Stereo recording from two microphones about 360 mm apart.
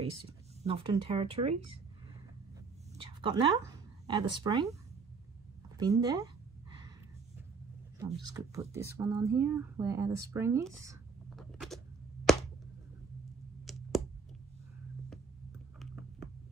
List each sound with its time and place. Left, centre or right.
0.3 s speech: centre
3.0 s a woman's voice: centre
5.8 s speech: centre
8.0 s speech: centre
12.3 s a sound: centre
15.8 s a sound: centre